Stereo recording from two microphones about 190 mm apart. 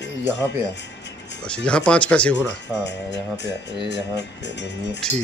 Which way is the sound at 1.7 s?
5° left (ahead or behind).